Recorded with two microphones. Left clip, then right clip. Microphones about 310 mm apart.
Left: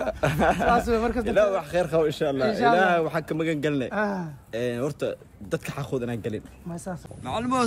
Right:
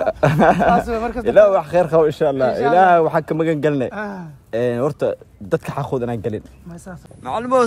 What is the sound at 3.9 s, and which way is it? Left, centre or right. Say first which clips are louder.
Speech: left 1 dB; centre.